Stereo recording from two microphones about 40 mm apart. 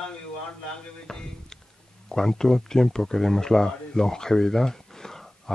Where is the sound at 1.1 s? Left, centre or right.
Centre.